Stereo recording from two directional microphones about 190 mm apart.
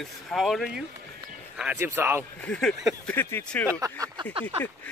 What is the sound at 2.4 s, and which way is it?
Speech, 5° left (ahead or behind).